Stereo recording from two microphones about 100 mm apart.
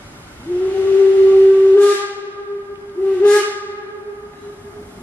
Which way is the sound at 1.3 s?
15° left (ahead or behind).